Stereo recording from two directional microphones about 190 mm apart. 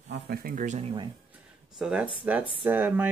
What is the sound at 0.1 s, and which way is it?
Speech, 55° right (ahead or behind).